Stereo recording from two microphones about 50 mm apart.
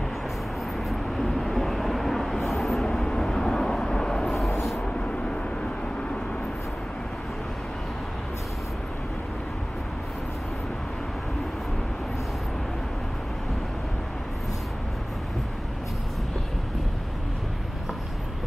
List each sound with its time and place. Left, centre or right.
0.8 s vehicle: centre
4.5 s vehicle: left
4.8 s vehicle: centre